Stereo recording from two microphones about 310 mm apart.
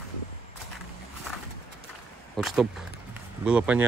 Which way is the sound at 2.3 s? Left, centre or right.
Centre.